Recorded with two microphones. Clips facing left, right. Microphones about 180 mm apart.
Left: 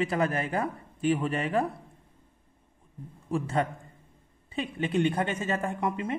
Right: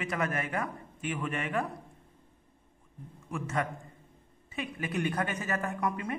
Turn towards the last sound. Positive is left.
turn(degrees=25)  # may be behind; listen again after turning